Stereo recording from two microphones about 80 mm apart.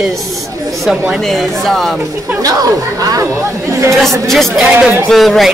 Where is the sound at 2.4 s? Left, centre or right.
Right.